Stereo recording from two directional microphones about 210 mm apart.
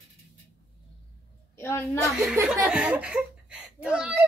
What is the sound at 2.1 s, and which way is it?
A child's voice, 5° right (ahead or behind).